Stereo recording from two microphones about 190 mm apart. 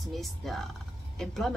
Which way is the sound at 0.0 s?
Centre (ahead or behind).